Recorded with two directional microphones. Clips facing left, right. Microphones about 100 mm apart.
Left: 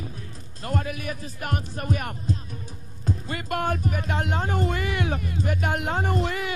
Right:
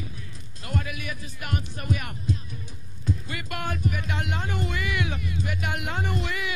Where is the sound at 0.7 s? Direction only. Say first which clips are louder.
Left 3 dB; 40° left (ahead or behind).